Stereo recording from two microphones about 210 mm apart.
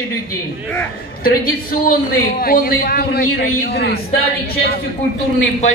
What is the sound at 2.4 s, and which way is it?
A man's voice, 45° left (ahead or behind).